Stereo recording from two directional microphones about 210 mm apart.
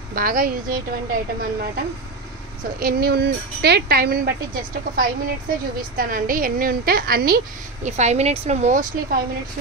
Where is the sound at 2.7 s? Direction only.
45° right (ahead or behind).